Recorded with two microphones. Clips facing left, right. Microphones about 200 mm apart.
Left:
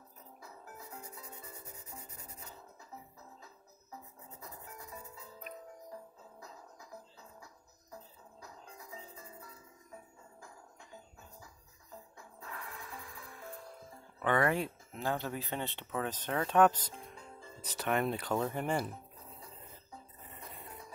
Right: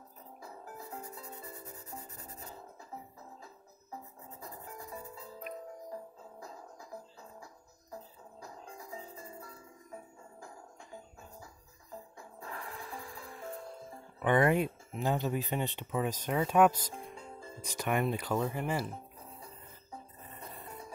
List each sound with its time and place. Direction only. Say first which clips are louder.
4.4 s music: right 4 dB; 35° right (ahead or behind)
8.4 s music: right 5 dB; 30° right (ahead or behind)
12.2 s music: right 2 dB; 30° right (ahead or behind)
14.2 s speech: right 4 dB; 20° right (ahead or behind)